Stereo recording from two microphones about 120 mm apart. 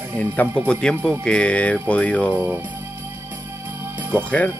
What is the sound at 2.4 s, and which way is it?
Speech, 20° right (ahead or behind).